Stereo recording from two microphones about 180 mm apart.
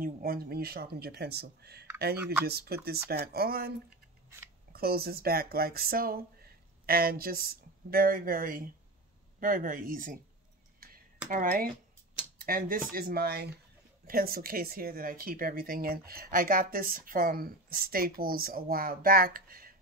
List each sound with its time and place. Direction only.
0.0 s speech: 55° right (ahead or behind)
4.7 s speech: 60° right (ahead or behind)
11.2 s speech: 50° right (ahead or behind)